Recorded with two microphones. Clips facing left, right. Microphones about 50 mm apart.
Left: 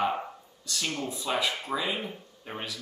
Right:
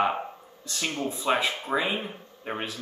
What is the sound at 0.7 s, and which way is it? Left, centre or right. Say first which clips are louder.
A man's voice: right 2 dB; right.